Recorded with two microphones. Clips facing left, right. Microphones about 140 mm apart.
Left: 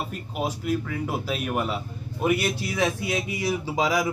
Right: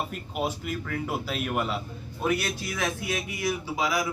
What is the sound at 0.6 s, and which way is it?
A man's voice, 5° left (ahead or behind).